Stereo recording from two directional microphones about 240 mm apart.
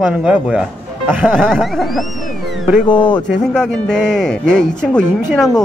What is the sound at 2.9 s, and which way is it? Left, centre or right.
Speech, centre.